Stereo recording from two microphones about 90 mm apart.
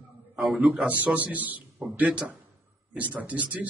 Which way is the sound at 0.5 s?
15° right (ahead or behind).